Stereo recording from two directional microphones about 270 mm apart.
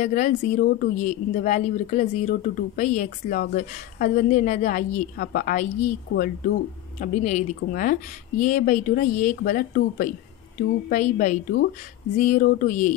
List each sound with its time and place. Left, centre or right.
0.0 s speech: left